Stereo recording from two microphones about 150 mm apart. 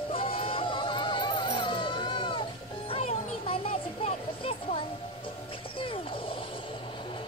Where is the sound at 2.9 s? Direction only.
40° left (ahead or behind).